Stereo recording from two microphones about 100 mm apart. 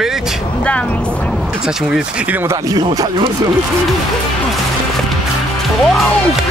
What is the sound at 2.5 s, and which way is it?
Speech, 40° right (ahead or behind).